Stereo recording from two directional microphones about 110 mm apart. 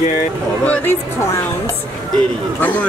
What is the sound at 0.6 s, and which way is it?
Speech, 15° left (ahead or behind).